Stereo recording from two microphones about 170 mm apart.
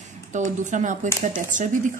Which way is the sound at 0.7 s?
45° right (ahead or behind).